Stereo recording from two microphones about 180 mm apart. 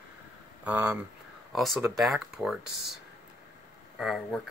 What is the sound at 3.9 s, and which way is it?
Speech, centre (ahead or behind).